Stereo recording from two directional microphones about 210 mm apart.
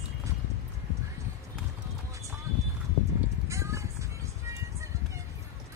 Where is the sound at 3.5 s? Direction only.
15° right (ahead or behind).